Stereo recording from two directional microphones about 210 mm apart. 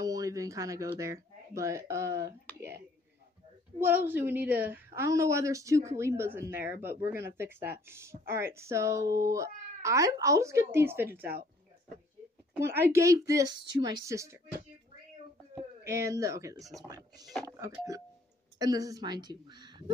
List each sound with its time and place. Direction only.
0.0 s speech: 15° right (ahead or behind)
3.8 s a woman's voice: 10° right (ahead or behind)
12.5 s a woman's voice: 10° right (ahead or behind)
15.5 s a woman's voice: 15° right (ahead or behind)
17.3 s speech: centre (ahead or behind)
17.6 s a woman's voice: 15° right (ahead or behind)